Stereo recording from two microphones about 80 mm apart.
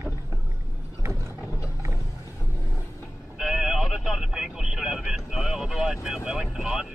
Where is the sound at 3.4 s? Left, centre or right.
Centre.